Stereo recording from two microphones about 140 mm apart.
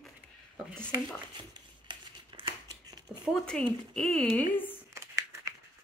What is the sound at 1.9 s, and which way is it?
Crumpling, 35° right (ahead or behind).